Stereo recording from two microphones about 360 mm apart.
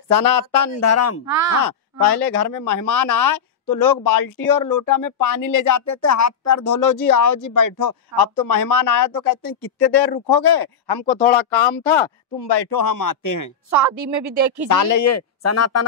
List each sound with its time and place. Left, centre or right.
0.1 s speech: left
0.7 s speech: left
1.2 s speech: right
2.0 s speech: left
10.3 s speech: left
11.2 s speech: centre
12.4 s speech: left
13.7 s speech: right
14.7 s speech: left